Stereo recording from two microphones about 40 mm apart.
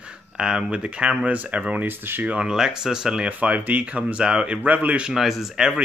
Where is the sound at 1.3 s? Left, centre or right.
Right.